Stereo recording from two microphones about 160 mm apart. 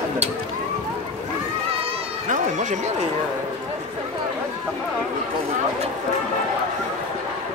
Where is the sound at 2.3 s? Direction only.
50° right (ahead or behind).